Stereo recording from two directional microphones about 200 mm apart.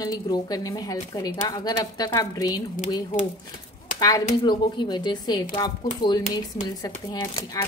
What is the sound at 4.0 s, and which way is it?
A woman's voice, 15° left (ahead or behind).